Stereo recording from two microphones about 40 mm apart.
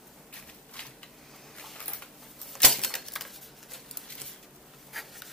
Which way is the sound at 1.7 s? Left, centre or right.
Left.